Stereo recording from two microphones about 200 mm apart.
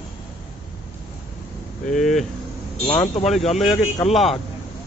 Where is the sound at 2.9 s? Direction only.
25° left (ahead or behind).